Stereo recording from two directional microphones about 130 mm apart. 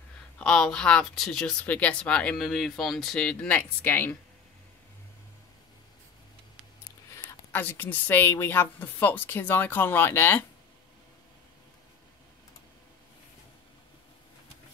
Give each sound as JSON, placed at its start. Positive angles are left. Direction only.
{"t": 0.4, "sound": "speech", "side_deg": 5}
{"t": 7.2, "sound": "speech", "side_deg": 15}